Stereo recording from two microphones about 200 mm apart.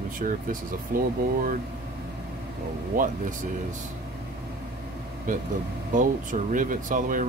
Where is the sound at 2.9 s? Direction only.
45° right (ahead or behind).